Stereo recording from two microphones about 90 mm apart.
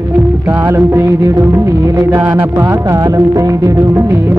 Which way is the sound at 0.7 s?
30° right (ahead or behind).